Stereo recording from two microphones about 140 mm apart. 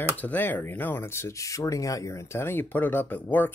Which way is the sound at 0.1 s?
10° left (ahead or behind).